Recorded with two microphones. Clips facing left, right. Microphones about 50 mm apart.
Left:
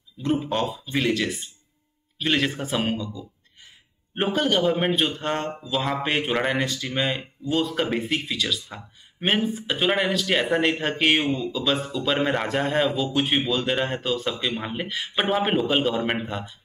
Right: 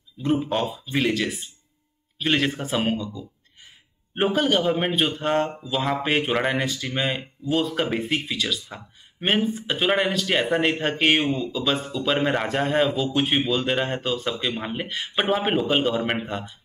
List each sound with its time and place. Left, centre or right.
0.2 s speech: centre